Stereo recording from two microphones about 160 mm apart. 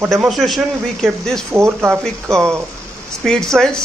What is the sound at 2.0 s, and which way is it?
A man's voice, 5° left (ahead or behind).